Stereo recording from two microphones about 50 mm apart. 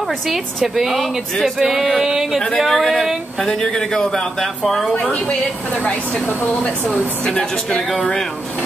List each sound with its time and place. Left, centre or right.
0.7 s speech: centre
2.6 s speech: centre
3.4 s speech: centre
5.8 s speech: left